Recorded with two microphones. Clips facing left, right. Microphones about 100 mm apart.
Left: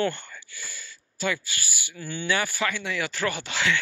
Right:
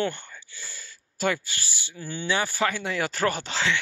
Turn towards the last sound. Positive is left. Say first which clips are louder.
# right 1 dB
turn(degrees=-30)  # may be behind; listen again after turning